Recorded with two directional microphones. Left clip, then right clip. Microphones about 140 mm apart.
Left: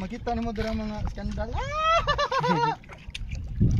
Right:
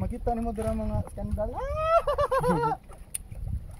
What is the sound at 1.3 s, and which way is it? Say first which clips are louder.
Speech: right 2 dB; 50° left (ahead or behind).